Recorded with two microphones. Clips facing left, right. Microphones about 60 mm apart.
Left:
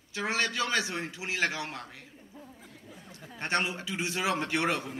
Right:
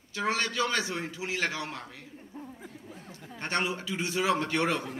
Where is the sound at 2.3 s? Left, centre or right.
Right.